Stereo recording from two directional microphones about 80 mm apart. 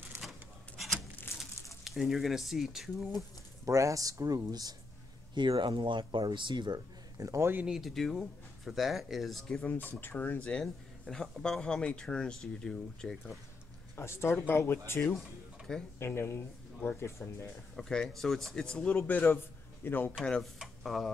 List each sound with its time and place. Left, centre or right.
0.2 s rub: centre
1.9 s speech: centre
3.6 s speech: right
5.3 s speech: right
7.2 s speech: right
7.6 s speech: centre
9.7 s speech: left; by 13.4 s centre
13.9 s speech: left
15.1 s a sound: centre
16.0 s speech: left
17.7 s speech: centre; by 20.2 s left
20.5 s speech: centre